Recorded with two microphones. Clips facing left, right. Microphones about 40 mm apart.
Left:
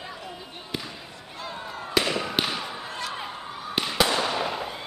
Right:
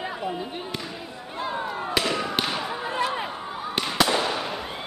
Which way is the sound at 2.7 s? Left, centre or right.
Right.